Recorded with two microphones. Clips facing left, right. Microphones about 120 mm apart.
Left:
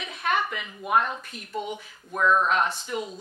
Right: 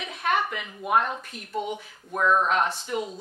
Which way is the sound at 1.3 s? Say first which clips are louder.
Right 1 dB; 50° right (ahead or behind).